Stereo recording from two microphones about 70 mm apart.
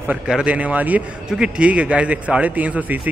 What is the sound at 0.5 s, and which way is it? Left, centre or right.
A man's voice, right.